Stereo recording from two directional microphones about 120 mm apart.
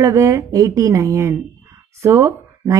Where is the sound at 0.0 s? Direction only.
25° right (ahead or behind).